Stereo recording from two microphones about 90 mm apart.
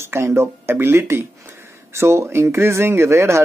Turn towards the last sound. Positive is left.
turn(degrees=-30)  # may be behind; listen again after turning